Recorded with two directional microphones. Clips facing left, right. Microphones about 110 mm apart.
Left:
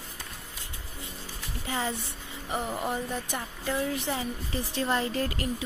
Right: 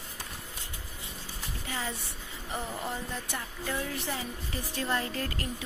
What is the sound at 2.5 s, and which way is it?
A woman's voice, 20° left (ahead or behind).